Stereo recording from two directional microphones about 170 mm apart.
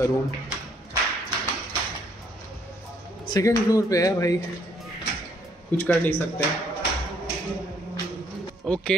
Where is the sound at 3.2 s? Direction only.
20° left (ahead or behind).